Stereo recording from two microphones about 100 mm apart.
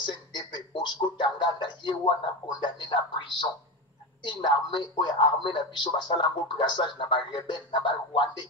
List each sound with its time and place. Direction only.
0.0 s music: 50° left (ahead or behind)
4.2 s speech: 50° left (ahead or behind)